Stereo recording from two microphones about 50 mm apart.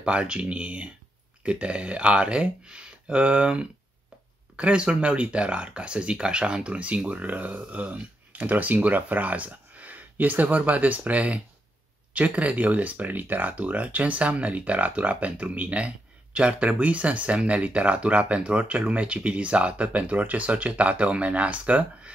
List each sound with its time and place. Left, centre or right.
0.0 s speech: right